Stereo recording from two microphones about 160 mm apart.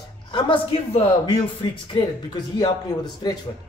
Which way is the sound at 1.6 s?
30° left (ahead or behind).